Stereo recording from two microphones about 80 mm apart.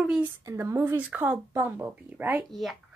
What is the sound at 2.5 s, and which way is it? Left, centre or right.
Speech, centre.